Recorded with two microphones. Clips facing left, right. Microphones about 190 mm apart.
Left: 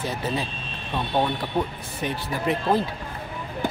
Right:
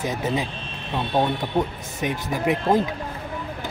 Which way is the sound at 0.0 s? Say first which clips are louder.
Right 3 dB; 15° right (ahead or behind).